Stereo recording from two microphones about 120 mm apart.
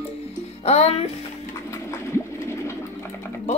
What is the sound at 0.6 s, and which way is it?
Speech, 60° left (ahead or behind).